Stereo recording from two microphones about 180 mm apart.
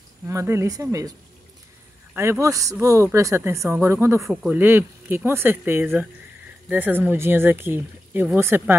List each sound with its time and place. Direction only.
0.3 s speech: 15° right (ahead or behind)
2.1 s speech: 15° right (ahead or behind)